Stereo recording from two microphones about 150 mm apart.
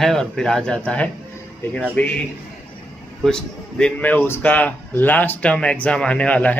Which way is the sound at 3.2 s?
5° left (ahead or behind).